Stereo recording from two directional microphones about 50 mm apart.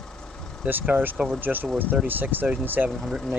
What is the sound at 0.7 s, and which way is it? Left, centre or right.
Speech, right.